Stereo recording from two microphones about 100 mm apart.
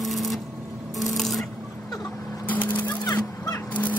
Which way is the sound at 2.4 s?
15° left (ahead or behind).